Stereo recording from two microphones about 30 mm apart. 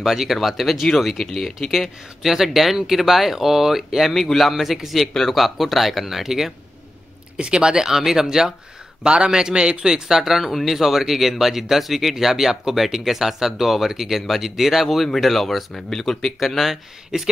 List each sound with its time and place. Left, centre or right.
0.0 s speech: centre
1.7 s speech: centre
4.1 s speech: centre
7.3 s speech: right
7.9 s speech: centre
9.0 s a man's voice: right
10.0 s speech: centre
14.2 s speech: centre
16.4 s speech: centre